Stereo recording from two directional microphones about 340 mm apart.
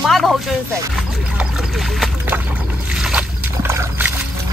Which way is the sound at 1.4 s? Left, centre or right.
Centre.